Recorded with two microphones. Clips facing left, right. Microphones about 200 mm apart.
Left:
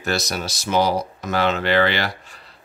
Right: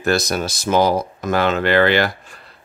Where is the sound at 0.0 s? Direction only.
50° right (ahead or behind).